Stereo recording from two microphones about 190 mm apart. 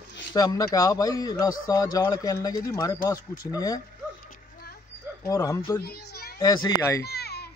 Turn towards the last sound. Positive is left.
turn(degrees=55)  # may be behind; listen again after turning